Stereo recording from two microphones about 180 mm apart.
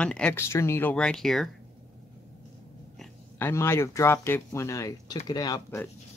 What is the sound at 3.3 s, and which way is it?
Speech, 15° left (ahead or behind).